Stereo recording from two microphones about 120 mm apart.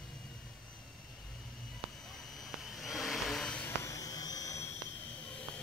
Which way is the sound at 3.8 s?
30° left (ahead or behind).